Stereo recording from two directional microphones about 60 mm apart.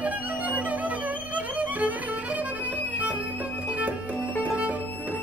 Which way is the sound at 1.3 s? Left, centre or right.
Right.